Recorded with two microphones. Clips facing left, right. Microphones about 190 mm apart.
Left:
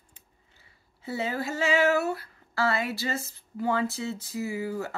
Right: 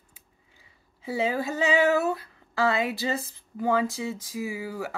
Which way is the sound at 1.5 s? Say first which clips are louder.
Right 1 dB; 15° right (ahead or behind).